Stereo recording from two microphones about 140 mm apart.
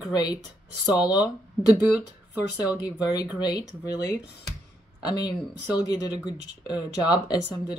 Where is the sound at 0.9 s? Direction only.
10° right (ahead or behind).